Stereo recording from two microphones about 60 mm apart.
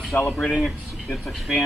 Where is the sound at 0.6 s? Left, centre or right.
Centre.